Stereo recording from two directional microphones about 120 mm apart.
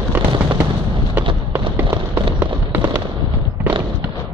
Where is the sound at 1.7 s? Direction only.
20° right (ahead or behind).